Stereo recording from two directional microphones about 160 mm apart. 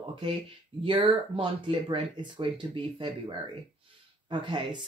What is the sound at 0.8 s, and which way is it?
Speech, 35° right (ahead or behind).